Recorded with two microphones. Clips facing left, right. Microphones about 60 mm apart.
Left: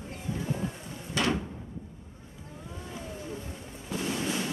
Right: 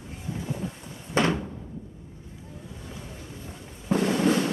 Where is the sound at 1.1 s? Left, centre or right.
Right.